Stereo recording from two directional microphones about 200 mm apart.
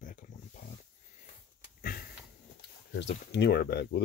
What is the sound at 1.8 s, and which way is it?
Sniff, 50° left (ahead or behind).